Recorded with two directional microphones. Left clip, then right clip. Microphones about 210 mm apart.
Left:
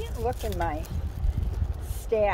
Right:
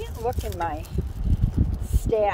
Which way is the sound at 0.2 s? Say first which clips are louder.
Right 2 dB; 40° right (ahead or behind).